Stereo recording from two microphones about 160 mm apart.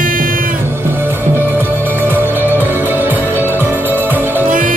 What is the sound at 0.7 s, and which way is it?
Music, 15° right (ahead or behind).